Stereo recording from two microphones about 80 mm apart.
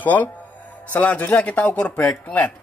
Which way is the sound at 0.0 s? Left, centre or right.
Left.